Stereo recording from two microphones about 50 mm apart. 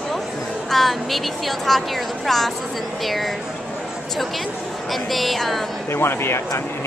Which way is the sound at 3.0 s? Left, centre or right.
Centre.